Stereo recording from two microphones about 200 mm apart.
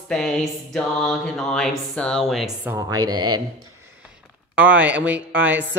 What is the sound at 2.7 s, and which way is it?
Speech, 20° right (ahead or behind).